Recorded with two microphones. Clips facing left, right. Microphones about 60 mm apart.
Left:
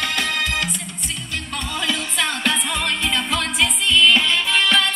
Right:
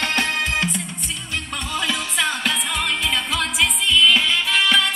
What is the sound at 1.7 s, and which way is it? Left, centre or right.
Music, centre.